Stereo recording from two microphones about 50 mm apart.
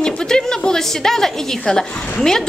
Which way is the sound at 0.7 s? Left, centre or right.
Centre.